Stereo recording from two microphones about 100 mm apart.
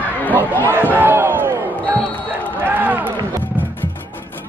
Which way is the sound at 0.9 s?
20° right (ahead or behind).